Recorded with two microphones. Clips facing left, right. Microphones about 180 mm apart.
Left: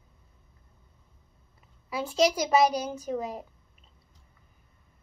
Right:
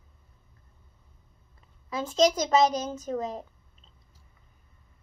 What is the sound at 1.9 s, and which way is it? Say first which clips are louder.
A child's voice: right 1 dB; 10° left (ahead or behind).